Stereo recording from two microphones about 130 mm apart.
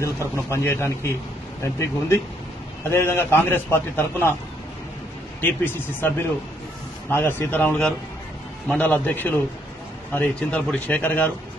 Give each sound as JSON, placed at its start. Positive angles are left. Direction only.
{"t": 0.0, "sound": "a man's voice", "side_deg": 20}
{"t": 5.4, "sound": "a man's voice", "side_deg": 15}